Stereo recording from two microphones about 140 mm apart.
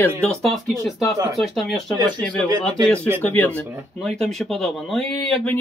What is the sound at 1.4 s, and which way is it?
Speech, centre (ahead or behind).